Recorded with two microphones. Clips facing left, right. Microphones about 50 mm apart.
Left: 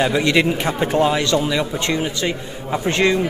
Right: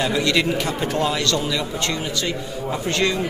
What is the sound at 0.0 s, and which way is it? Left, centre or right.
A man's voice, left.